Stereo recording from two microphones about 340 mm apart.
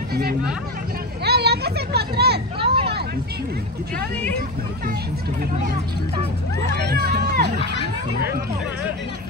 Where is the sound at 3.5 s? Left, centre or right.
Right.